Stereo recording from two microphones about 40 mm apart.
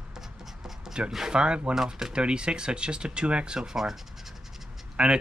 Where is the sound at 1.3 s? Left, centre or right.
Right.